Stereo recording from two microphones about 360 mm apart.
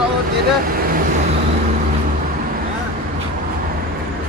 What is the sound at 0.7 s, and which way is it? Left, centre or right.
Vehicle, right.